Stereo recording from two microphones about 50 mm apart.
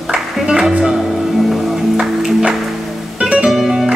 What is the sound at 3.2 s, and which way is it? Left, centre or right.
Music, centre.